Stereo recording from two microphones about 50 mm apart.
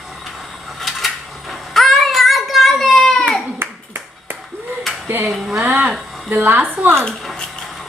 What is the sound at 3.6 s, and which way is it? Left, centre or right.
Clapping, right.